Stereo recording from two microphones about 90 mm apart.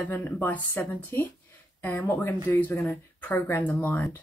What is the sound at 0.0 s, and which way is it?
Speech, 20° left (ahead or behind).